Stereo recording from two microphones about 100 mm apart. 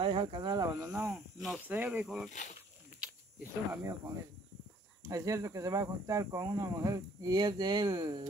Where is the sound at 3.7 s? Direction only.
30° right (ahead or behind).